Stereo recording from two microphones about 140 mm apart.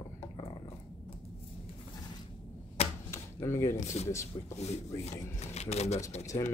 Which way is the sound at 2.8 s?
50° left (ahead or behind).